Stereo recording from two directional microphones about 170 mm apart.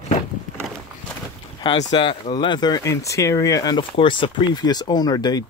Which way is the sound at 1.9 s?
30° left (ahead or behind).